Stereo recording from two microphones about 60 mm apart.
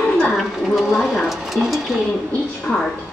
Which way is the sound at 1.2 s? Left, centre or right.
Centre.